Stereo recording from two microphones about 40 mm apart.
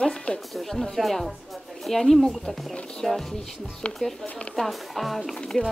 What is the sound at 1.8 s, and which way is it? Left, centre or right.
Pigeon, centre.